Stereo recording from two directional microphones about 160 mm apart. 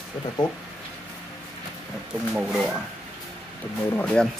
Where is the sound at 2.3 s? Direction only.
5° right (ahead or behind).